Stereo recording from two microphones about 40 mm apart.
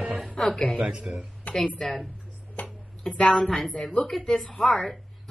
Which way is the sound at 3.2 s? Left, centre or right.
Centre.